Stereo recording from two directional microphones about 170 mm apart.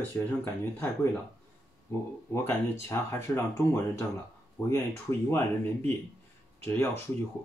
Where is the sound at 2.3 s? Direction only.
15° left (ahead or behind).